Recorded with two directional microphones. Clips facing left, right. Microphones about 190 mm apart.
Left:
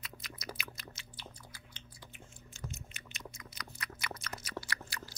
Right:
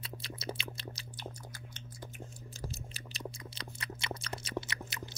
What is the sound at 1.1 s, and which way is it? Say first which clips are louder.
Chewing: right 7 dB; 45° right (ahead or behind).